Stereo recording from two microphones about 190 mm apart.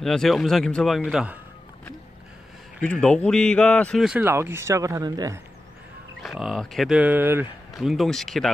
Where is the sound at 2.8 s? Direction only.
5° left (ahead or behind).